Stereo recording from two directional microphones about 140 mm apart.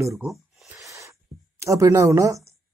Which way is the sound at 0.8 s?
20° right (ahead or behind).